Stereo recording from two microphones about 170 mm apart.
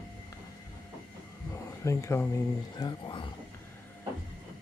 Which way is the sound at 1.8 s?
15° left (ahead or behind).